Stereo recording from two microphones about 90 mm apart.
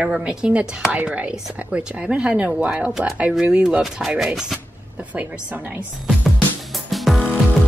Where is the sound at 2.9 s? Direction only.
5° right (ahead or behind).